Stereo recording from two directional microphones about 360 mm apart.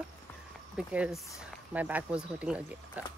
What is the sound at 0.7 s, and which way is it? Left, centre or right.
Speech, centre.